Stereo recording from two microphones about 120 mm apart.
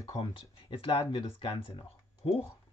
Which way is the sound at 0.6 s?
50° left (ahead or behind).